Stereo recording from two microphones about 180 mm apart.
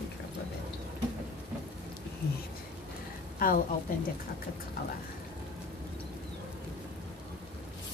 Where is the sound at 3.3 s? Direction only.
50° left (ahead or behind).